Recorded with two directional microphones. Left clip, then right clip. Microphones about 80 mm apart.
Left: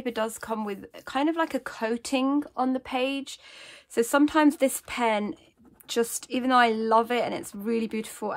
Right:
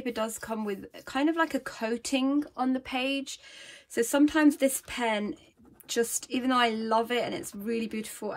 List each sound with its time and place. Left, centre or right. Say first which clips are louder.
0.0 s a woman's voice: left 3 dB; left